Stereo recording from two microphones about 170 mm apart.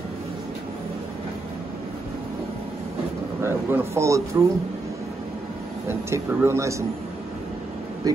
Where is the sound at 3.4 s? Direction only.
15° right (ahead or behind).